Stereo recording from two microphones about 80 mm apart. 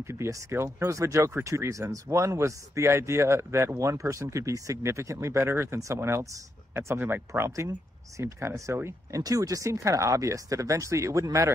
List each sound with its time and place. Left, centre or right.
0.0 s speech: right